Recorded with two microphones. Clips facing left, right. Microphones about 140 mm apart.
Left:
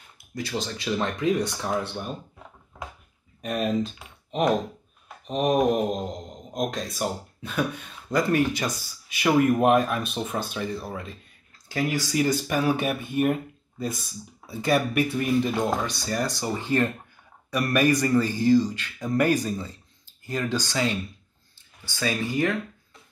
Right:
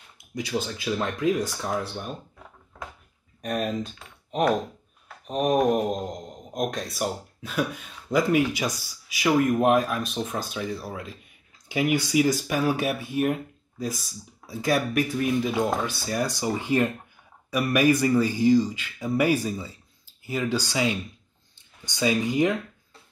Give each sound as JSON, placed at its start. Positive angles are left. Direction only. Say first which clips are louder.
{"t": 0.3, "sound": "speech", "louder": "right 1 dB", "side_deg": -10}
{"t": 3.4, "sound": "speech", "louder": "left 1 dB", "side_deg": 0}
{"t": 5.2, "sound": "speech", "louder": "even", "side_deg": -5}
{"t": 9.2, "sound": "speech", "louder": "left 1 dB", "side_deg": 5}